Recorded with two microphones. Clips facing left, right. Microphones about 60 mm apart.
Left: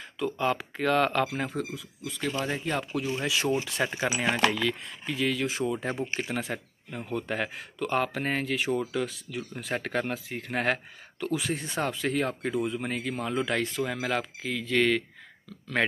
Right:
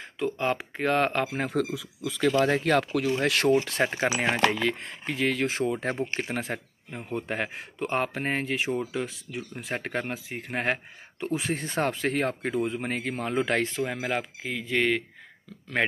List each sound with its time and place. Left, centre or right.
0.2 s speech: right
1.8 s speech: right
4.5 s speech: right
4.7 s speech: right
6.9 s speech: right